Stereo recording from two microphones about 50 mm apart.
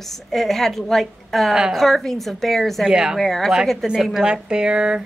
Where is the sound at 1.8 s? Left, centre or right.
Centre.